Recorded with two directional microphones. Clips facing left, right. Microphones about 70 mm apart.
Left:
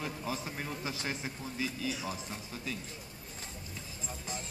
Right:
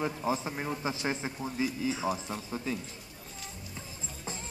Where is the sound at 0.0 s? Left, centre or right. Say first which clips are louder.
Right 6 dB; right.